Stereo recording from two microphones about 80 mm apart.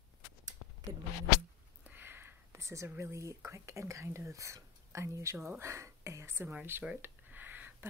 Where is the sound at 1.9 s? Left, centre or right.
Right.